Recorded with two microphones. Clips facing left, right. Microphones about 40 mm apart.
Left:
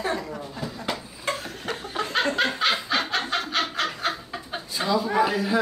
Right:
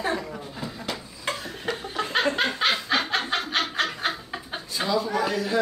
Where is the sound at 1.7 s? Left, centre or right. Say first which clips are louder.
Right 1 dB; centre.